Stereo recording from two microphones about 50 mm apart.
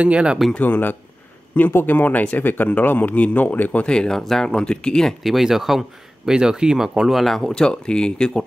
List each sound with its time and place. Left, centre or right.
0.0 s speech: right
0.6 s speech: left
3.8 s speech: centre
5.2 s speech: centre
7.2 s speech: centre